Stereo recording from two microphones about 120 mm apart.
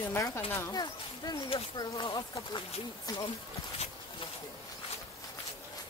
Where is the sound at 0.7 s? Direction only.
35° left (ahead or behind).